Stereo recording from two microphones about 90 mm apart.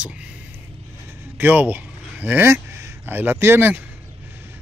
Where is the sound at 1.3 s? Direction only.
20° right (ahead or behind).